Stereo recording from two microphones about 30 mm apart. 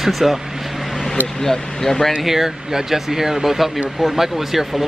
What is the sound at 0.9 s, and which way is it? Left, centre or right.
Vehicle, centre.